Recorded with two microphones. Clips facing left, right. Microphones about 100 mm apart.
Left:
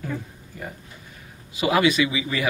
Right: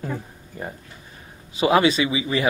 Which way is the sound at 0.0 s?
30° right (ahead or behind).